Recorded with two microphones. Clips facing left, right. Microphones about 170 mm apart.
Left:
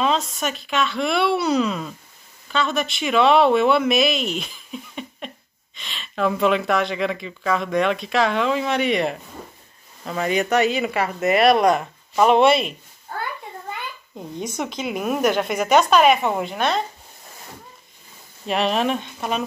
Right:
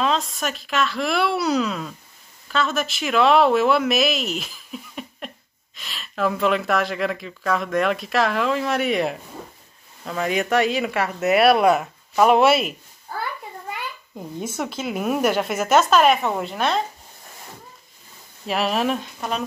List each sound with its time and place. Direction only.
0.0 s speech: centre (ahead or behind)
14.1 s speech: 5° right (ahead or behind)
18.5 s speech: 5° right (ahead or behind)